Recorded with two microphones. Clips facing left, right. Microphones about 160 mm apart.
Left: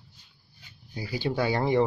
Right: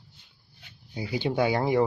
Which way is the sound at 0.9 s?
20° right (ahead or behind).